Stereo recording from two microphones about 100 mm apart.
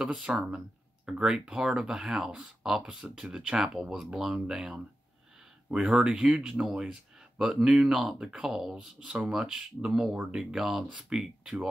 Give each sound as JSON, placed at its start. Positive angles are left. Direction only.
{"t": 0.0, "sound": "speech", "side_deg": -10}